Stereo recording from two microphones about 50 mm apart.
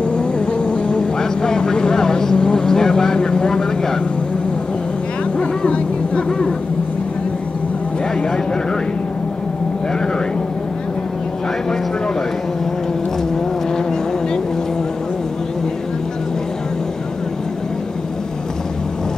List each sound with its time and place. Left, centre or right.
0.0 s vehicle: left
5.4 s music: left